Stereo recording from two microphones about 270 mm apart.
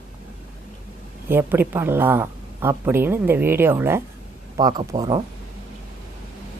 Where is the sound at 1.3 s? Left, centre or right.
Centre.